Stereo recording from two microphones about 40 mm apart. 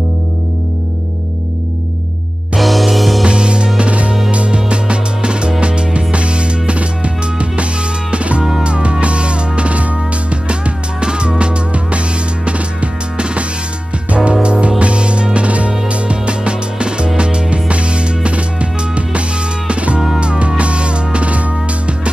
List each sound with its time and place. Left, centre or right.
2.5 s music: centre
3.3 s music: right